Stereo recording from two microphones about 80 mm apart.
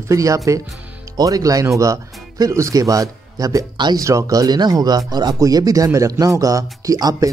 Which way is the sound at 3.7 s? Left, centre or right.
Right.